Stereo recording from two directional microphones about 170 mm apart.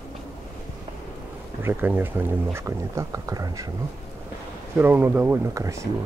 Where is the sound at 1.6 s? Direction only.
10° right (ahead or behind).